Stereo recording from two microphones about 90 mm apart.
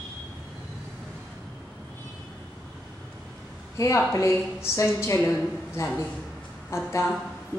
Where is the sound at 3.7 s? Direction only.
35° left (ahead or behind).